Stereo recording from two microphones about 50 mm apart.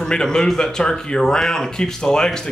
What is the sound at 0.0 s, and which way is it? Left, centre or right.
Speech, centre.